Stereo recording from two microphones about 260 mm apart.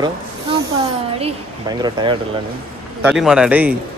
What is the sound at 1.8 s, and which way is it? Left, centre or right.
Speech, centre.